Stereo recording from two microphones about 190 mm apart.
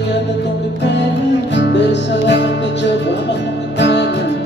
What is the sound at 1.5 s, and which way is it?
Music, 65° left (ahead or behind).